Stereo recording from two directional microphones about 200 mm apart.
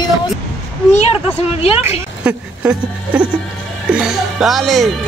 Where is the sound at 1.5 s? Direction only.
30° left (ahead or behind).